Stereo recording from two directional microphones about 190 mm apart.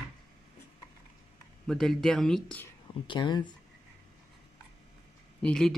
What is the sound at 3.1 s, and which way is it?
Speech, 25° left (ahead or behind).